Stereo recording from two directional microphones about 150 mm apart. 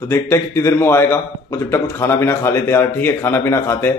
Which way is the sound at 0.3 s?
15° left (ahead or behind).